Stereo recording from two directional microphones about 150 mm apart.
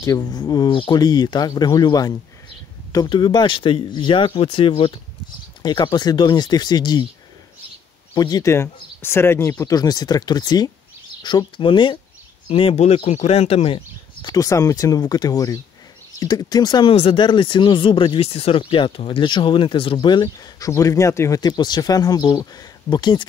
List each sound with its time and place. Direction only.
0.0 s speech: 25° left (ahead or behind)
8.1 s speech: 25° left (ahead or behind)